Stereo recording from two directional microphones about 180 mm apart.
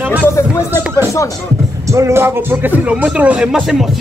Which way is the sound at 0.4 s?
15° left (ahead or behind).